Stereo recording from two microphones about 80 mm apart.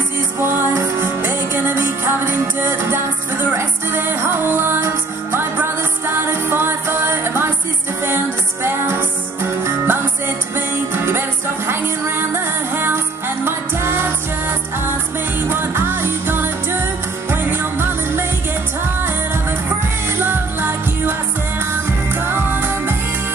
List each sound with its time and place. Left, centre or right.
0.4 s music: right
8.6 s music: right
15.4 s music: right
20.1 s music: right